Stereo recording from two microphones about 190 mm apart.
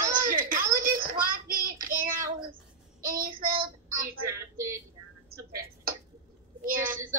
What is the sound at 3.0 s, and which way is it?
Child singing, 50° right (ahead or behind).